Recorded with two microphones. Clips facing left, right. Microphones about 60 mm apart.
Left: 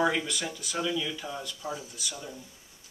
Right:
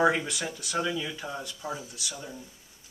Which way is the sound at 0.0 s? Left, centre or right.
Centre.